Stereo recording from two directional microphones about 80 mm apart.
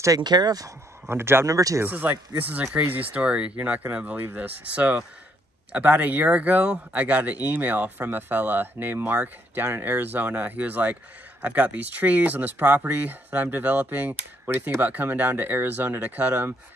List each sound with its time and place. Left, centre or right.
0.2 s speech: right
1.0 s speech: right
1.5 s speech: right
1.8 s speech: right